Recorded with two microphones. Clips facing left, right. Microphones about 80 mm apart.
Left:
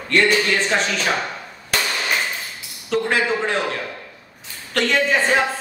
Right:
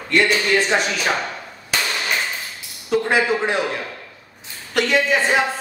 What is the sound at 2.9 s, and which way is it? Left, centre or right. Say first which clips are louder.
Speech: right 2 dB; centre.